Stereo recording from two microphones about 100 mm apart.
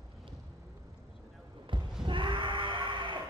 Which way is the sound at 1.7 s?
55° right (ahead or behind).